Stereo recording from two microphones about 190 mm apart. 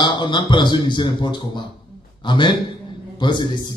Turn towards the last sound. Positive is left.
turn(degrees=25)  # may be behind; listen again after turning